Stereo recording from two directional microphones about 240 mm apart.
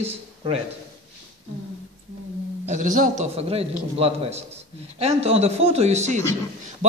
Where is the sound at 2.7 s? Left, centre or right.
Right.